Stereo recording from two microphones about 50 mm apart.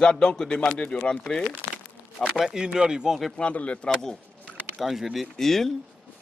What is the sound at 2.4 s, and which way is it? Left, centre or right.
Speech, centre.